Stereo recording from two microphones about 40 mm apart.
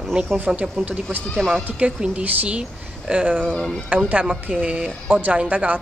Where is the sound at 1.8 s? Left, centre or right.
Right.